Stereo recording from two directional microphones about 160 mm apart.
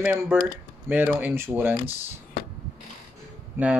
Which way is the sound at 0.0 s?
10° right (ahead or behind).